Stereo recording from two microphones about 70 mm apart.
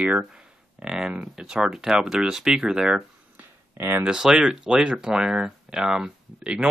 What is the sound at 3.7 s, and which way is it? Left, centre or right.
Speech, right.